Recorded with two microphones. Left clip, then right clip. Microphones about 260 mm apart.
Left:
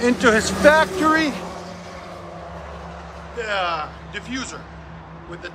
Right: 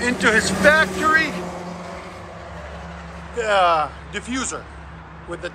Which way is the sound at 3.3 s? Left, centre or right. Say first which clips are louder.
Right 6 dB; centre.